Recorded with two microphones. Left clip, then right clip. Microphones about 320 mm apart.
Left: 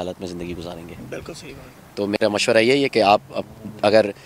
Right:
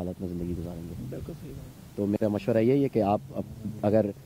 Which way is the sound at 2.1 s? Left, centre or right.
Centre.